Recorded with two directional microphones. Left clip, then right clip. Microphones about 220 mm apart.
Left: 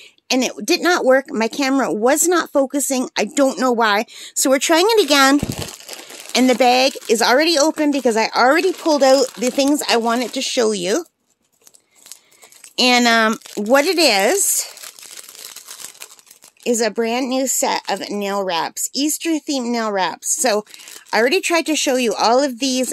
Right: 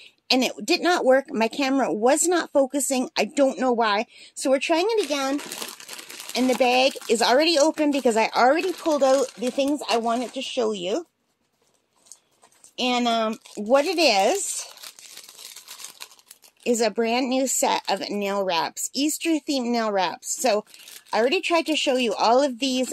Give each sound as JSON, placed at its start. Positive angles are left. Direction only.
{"t": 0.3, "sound": "speech", "side_deg": 15}
{"t": 8.5, "sound": "speech", "side_deg": 35}
{"t": 12.7, "sound": "speech", "side_deg": 30}
{"t": 16.6, "sound": "speech", "side_deg": 15}